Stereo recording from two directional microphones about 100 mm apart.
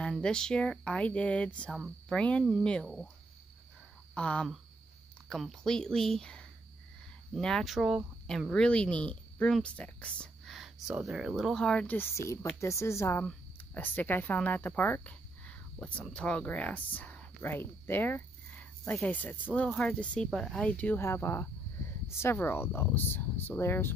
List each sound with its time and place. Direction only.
0.2 s speech: 5° left (ahead or behind)
1.7 s speech: centre (ahead or behind)
2.1 s speech: 10° left (ahead or behind)
4.1 s speech: 10° left (ahead or behind)
10.4 s speech: centre (ahead or behind); by 12.1 s 15° left (ahead or behind)
12.2 s speech: 30° left (ahead or behind)
13.2 s speech: 15° left (ahead or behind)
20.5 s speech: 15° left (ahead or behind)